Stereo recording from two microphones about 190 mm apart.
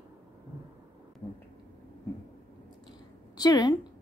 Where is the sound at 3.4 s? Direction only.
20° left (ahead or behind).